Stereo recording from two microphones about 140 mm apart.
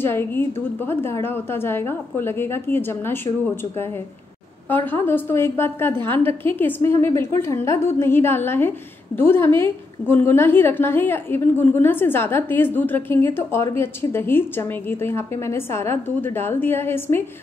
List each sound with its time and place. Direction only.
0.0 s a woman's voice: 15° left (ahead or behind)
4.6 s a woman's voice: 15° left (ahead or behind)